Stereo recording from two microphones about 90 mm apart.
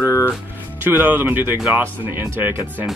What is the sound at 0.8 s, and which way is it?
Speech, 20° right (ahead or behind).